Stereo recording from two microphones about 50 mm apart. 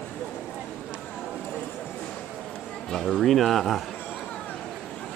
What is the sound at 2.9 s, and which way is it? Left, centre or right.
Speech, centre.